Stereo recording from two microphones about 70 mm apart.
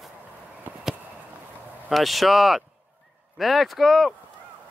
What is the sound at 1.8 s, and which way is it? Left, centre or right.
Speech, centre.